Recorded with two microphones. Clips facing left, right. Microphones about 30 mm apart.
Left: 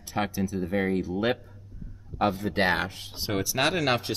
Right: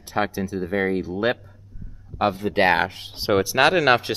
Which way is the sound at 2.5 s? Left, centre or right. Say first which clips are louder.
Right 6 dB; right.